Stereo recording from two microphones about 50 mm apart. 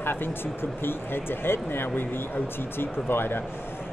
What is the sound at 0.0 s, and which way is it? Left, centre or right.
Speech, left.